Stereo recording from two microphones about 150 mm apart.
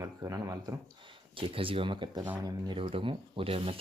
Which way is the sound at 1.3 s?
35° right (ahead or behind).